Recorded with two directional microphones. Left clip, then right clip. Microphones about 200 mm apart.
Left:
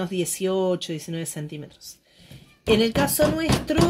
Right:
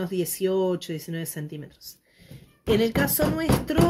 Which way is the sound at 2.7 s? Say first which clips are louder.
Left 2 dB; 35° left (ahead or behind).